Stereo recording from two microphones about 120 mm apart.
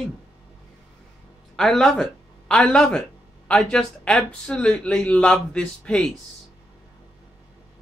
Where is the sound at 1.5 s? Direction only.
5° left (ahead or behind).